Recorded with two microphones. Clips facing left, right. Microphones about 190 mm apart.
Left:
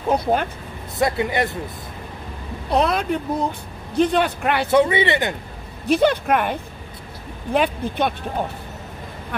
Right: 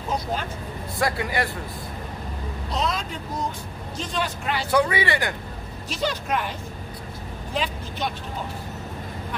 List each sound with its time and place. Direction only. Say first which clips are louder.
0.1 s speech: left 8 dB; 60° left (ahead or behind)
0.9 s speech: left 5 dB; 20° left (ahead or behind)
2.7 s speech: left 9 dB; 60° left (ahead or behind)
4.6 s speech: left 4 dB; 25° left (ahead or behind)
5.9 s speech: left 10 dB; 60° left (ahead or behind)